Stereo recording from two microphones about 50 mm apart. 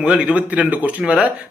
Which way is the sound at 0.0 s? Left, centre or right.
Right.